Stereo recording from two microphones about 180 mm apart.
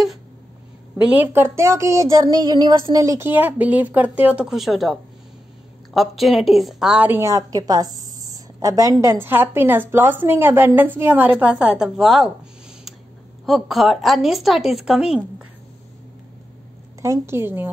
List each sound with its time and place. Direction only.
0.9 s a woman's voice: 5° right (ahead or behind)
5.9 s a woman's voice: centre (ahead or behind)
13.5 s a woman's voice: centre (ahead or behind)
17.0 s a woman's voice: 15° right (ahead or behind)